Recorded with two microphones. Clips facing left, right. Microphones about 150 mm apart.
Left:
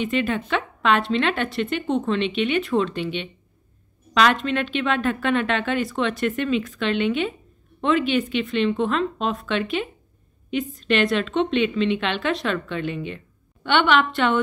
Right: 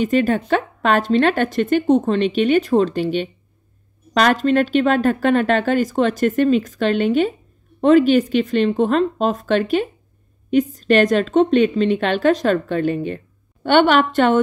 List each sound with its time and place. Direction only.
0.0 s a woman's voice: 40° right (ahead or behind)